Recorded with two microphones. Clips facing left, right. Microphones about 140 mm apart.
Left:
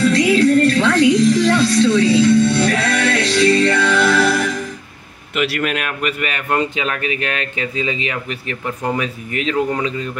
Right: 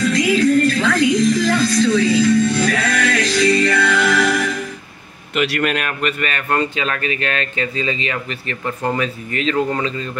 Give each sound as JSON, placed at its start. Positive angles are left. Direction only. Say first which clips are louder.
{"t": 0.1, "sound": "music", "louder": "left 2 dB", "side_deg": 30}
{"t": 5.3, "sound": "speech", "louder": "right 1 dB", "side_deg": 5}